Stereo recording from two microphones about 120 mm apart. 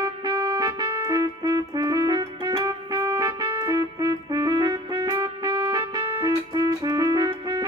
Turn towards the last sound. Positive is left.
turn(degrees=-30)  # may be behind; listen again after turning